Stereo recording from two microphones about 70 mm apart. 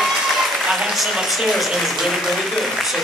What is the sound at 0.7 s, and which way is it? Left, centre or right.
Speech, centre.